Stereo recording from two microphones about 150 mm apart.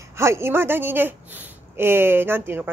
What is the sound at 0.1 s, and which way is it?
Speech, 20° right (ahead or behind).